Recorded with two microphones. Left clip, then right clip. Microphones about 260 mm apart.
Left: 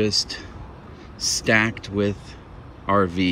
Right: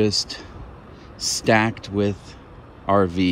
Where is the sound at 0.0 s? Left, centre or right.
Centre.